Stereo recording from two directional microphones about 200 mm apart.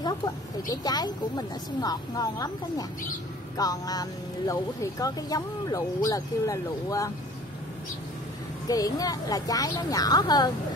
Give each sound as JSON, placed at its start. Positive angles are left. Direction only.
{"t": 0.0, "sound": "speech", "side_deg": 20}
{"t": 8.6, "sound": "speech", "side_deg": 20}